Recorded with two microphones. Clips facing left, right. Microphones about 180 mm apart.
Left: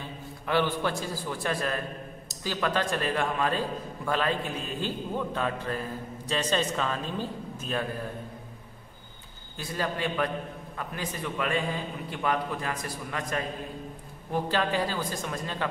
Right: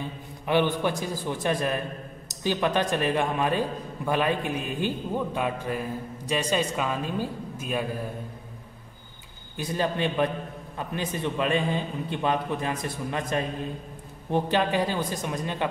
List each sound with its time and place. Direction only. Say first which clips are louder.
0.5 s a man's voice: right 3 dB; 15° right (ahead or behind)
9.6 s a man's voice: right 4 dB; 20° right (ahead or behind)